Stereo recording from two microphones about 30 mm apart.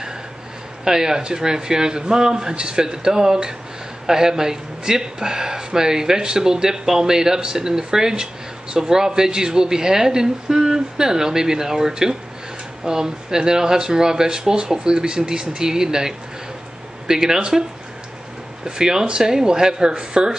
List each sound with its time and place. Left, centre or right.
0.8 s speech: centre
18.6 s speech: right